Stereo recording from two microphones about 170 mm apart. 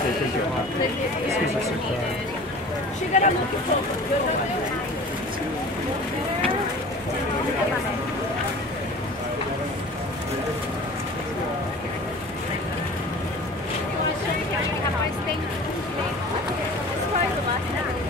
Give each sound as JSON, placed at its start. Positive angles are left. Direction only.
{"t": 3.1, "sound": "speech", "side_deg": 45}